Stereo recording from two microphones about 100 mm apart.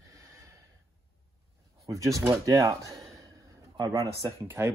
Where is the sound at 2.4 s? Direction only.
30° right (ahead or behind).